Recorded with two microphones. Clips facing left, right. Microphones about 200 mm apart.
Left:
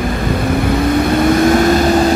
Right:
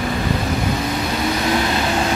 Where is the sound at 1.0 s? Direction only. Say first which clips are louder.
Left 10 dB; 55° left (ahead or behind).